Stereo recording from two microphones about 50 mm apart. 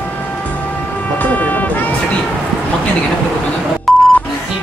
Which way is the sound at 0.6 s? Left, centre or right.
Left.